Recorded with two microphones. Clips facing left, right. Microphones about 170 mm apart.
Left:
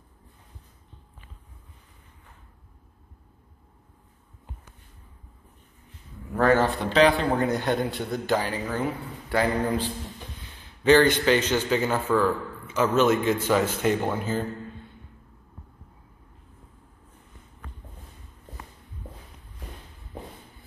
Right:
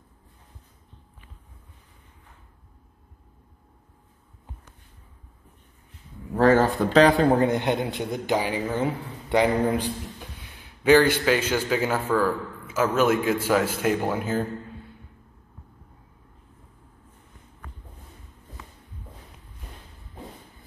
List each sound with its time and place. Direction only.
6.3 s speech: 35° right (ahead or behind)
7.2 s a man's voice: 25° right (ahead or behind); by 14.4 s 5° right (ahead or behind)